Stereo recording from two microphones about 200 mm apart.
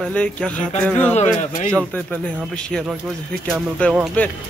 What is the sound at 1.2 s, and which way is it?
Speech, 35° left (ahead or behind).